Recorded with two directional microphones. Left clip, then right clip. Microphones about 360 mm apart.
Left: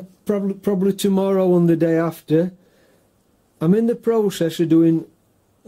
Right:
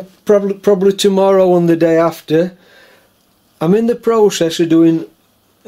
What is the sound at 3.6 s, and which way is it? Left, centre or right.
Speech, centre.